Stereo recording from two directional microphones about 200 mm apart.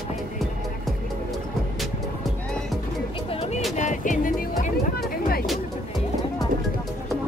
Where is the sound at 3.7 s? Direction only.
40° left (ahead or behind).